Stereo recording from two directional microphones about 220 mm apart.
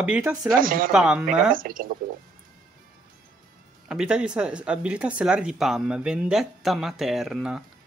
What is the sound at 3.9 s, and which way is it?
Speech, 5° right (ahead or behind).